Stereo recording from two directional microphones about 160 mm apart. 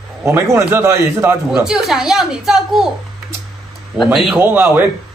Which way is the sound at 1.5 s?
5° right (ahead or behind).